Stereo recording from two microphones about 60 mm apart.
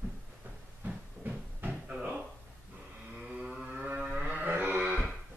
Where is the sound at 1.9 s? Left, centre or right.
Centre.